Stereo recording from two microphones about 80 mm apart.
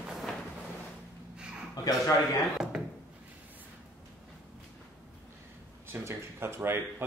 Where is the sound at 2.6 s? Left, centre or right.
Centre.